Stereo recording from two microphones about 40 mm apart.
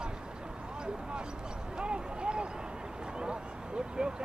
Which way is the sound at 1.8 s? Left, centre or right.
Right.